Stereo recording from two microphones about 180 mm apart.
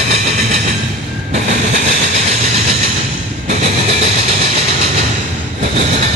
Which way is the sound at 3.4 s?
40° right (ahead or behind).